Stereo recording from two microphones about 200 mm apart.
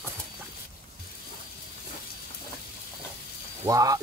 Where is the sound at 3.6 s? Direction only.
15° right (ahead or behind).